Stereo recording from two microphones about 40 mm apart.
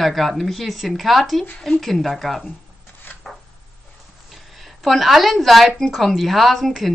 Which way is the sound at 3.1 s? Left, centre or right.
Left.